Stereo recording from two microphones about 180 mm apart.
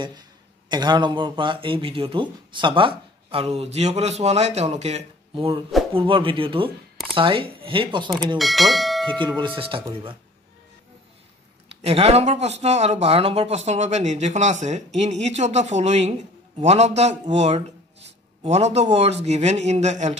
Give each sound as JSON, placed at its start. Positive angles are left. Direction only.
{"t": 0.7, "sound": "speech", "side_deg": -25}
{"t": 8.4, "sound": "speech", "side_deg": 0}
{"t": 9.6, "sound": "speech", "side_deg": -30}
{"t": 11.7, "sound": "speech", "side_deg": -35}